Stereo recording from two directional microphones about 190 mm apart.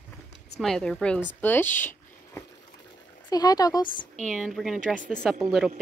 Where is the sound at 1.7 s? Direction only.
10° left (ahead or behind).